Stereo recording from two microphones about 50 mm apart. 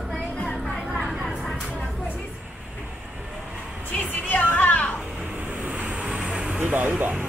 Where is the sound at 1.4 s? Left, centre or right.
Centre.